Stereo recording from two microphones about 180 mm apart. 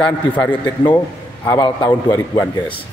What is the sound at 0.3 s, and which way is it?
A man's voice, 10° left (ahead or behind).